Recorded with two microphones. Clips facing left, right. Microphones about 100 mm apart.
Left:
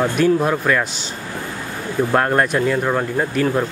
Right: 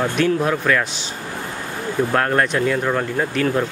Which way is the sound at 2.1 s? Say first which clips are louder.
Left 3 dB; 15° left (ahead or behind).